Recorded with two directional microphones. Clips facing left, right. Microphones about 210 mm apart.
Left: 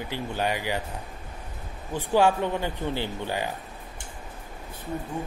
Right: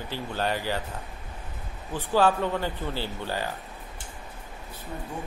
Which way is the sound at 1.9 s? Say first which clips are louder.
Left 1 dB; 15° left (ahead or behind).